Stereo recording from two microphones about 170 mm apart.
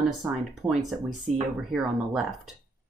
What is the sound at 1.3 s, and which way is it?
Speech, 45° right (ahead or behind).